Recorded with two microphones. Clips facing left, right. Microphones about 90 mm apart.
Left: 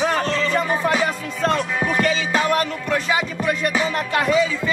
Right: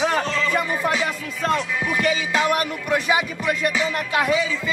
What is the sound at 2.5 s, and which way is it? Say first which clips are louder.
Speech: left 1 dB; 15° right (ahead or behind).